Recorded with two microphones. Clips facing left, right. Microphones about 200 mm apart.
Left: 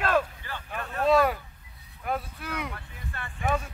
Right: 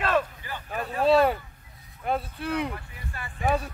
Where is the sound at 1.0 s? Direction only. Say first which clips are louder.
Right 2 dB; 30° right (ahead or behind).